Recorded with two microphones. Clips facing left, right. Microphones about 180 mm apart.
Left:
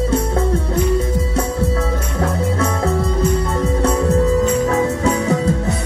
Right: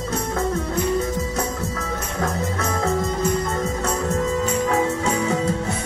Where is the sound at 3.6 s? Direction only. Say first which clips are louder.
Left 7 dB; 35° left (ahead or behind).